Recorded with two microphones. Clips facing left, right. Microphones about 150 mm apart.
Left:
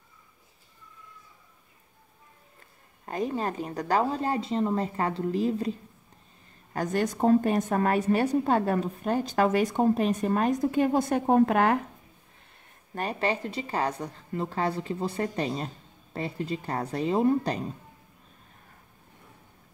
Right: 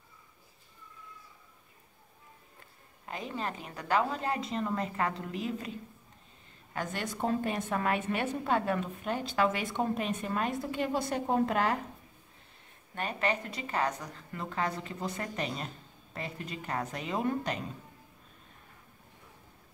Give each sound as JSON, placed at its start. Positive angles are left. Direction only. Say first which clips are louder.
{"t": 3.1, "sound": "a woman's voice", "louder": "left 7 dB", "side_deg": 40}
{"t": 6.7, "sound": "a woman's voice", "louder": "left 8 dB", "side_deg": 40}
{"t": 12.9, "sound": "a woman's voice", "louder": "left 4 dB", "side_deg": 35}